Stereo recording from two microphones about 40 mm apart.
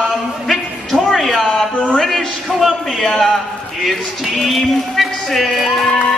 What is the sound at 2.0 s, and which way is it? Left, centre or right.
A man's voice, centre.